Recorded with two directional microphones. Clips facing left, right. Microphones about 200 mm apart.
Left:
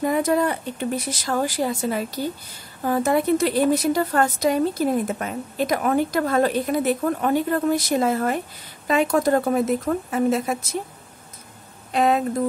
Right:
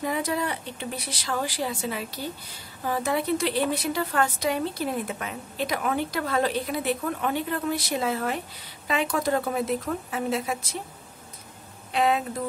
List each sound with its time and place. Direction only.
0.0 s a woman's voice: 50° left (ahead or behind)
11.9 s speech: 45° left (ahead or behind)